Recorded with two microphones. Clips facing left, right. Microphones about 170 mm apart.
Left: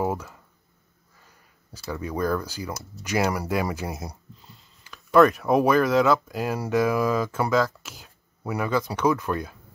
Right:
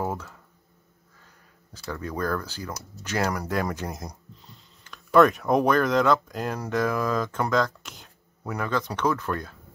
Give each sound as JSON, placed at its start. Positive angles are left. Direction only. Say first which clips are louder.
{"t": 0.0, "sound": "speech", "louder": "left 3 dB", "side_deg": 10}
{"t": 1.7, "sound": "speech", "louder": "left 2 dB", "side_deg": 10}